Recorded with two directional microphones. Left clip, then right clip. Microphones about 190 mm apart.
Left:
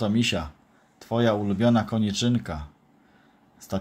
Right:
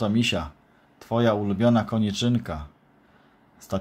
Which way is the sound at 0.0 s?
5° right (ahead or behind).